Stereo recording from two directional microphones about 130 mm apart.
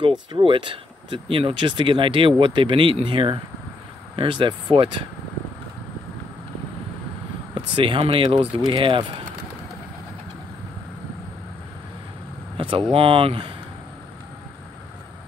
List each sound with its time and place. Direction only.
0.0 s speech: 40° right (ahead or behind)
7.5 s speech: 40° right (ahead or behind)
12.5 s vehicle: 40° right (ahead or behind)
12.9 s speech: 45° right (ahead or behind)